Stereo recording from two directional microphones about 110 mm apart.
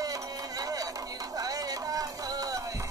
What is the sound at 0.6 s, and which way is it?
Music, 35° right (ahead or behind).